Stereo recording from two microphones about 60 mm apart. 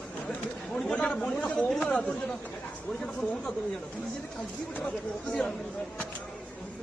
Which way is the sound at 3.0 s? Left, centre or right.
Centre.